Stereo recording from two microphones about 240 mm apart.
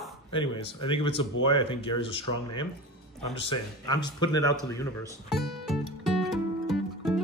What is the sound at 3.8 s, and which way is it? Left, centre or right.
Speech, centre.